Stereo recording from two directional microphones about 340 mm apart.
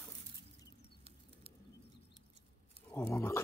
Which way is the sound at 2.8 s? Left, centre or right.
Centre.